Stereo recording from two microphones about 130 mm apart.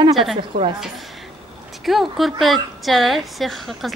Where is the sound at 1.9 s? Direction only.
Centre (ahead or behind).